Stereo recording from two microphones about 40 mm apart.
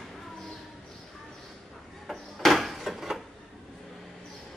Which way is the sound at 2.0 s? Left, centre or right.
Centre.